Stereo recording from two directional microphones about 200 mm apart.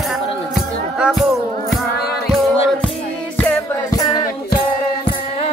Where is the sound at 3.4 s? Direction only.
10° left (ahead or behind).